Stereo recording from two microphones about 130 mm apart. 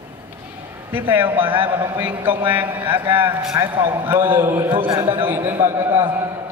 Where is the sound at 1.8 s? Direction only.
15° right (ahead or behind).